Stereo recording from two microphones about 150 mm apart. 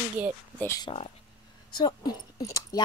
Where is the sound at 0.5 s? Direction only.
20° left (ahead or behind).